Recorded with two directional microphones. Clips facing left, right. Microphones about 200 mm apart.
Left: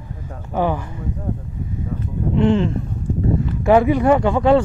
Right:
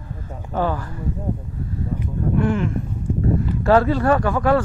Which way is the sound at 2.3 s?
25° left (ahead or behind).